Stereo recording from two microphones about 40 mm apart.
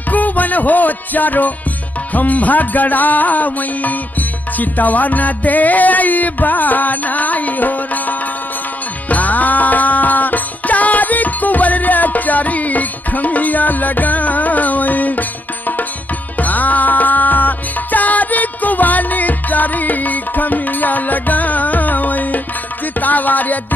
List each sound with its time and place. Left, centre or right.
0.1 s music: left